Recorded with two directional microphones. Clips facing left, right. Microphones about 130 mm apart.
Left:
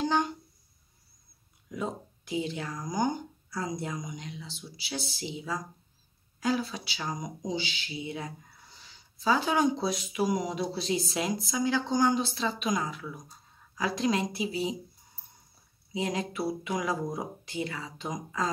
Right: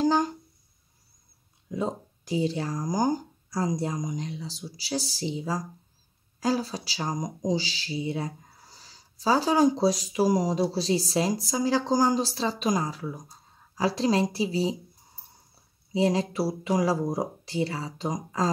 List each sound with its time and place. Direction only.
0.0 s speech: 40° right (ahead or behind)
1.7 s speech: 30° right (ahead or behind)
15.9 s speech: 35° right (ahead or behind)